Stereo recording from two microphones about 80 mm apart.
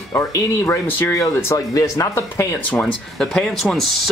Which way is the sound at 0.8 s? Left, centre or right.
Left.